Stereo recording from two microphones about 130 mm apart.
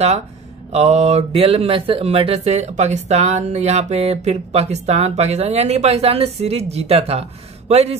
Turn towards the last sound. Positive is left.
turn(degrees=-55)  # may be behind; listen again after turning